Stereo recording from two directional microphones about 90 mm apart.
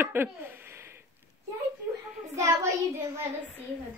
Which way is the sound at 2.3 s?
35° right (ahead or behind).